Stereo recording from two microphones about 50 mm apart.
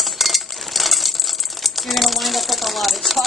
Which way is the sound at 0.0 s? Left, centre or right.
Centre.